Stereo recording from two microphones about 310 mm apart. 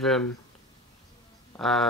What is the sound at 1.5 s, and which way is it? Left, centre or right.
Speech, centre.